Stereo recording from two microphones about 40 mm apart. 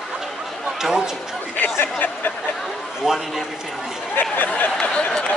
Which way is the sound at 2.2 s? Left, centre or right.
Left.